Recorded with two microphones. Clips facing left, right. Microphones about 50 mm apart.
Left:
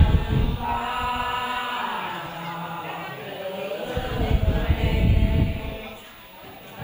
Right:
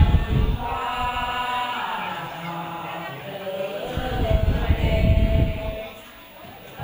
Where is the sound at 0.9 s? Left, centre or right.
Right.